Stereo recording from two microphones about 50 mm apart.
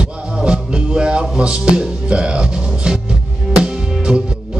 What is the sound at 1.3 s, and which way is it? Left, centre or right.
Speech, centre.